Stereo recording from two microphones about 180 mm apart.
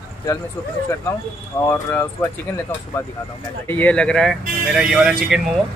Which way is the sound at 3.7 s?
10° left (ahead or behind).